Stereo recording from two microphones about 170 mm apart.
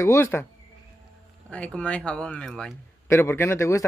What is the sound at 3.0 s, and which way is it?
Speech, 15° left (ahead or behind).